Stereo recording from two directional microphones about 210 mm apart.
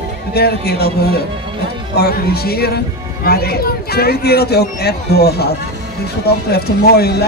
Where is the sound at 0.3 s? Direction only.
50° left (ahead or behind).